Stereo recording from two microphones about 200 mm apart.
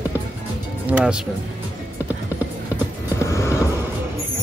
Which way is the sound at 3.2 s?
15° left (ahead or behind).